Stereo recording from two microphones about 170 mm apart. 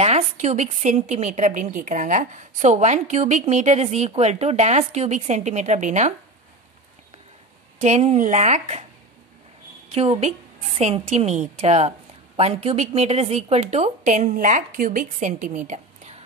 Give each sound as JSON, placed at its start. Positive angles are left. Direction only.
{"t": 0.0, "sound": "a woman's voice", "side_deg": -40}
{"t": 7.8, "sound": "a woman's voice", "side_deg": -40}
{"t": 9.8, "sound": "a woman's voice", "side_deg": -40}